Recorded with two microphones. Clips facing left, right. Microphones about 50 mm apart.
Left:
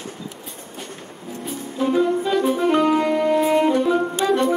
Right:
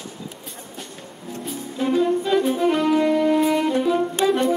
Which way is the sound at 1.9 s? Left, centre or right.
Centre.